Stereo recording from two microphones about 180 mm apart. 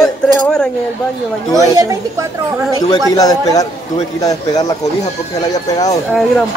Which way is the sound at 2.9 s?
20° left (ahead or behind).